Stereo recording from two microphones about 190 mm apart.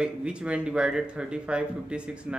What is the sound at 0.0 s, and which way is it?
A man's voice, 5° right (ahead or behind).